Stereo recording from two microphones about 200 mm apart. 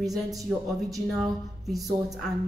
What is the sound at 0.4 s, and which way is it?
Speech, 15° right (ahead or behind).